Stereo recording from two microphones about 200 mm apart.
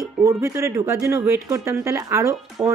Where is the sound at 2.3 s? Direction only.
Centre (ahead or behind).